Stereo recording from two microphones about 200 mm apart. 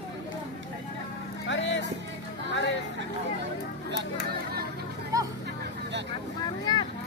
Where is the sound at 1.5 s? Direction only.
60° left (ahead or behind).